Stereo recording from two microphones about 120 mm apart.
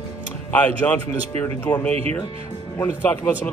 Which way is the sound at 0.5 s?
15° left (ahead or behind).